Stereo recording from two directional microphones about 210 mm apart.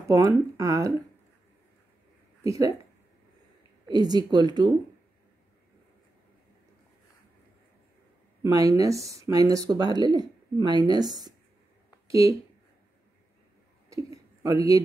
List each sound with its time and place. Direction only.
0.1 s speech: 15° right (ahead or behind)
2.4 s speech: 15° right (ahead or behind)
3.8 s speech: 20° right (ahead or behind)
8.4 s speech: 15° right (ahead or behind)
13.8 s a sound: 15° right (ahead or behind)